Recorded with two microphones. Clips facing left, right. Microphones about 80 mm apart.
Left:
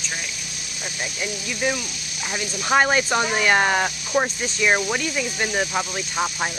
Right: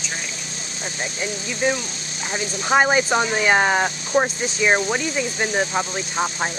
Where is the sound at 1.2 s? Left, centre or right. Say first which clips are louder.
Right 2 dB; right.